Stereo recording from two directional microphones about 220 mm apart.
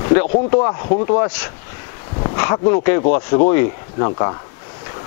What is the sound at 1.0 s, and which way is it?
Speech, 15° left (ahead or behind).